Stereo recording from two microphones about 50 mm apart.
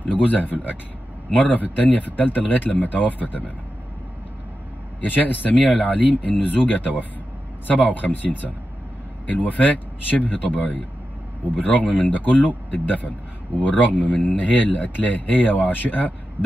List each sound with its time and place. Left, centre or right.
0.0 s speech: left
5.0 s speech: left
7.6 s speech: left
16.4 s a sound: right